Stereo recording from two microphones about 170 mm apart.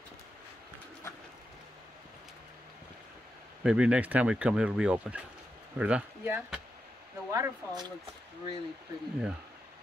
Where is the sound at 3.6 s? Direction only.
5° right (ahead or behind).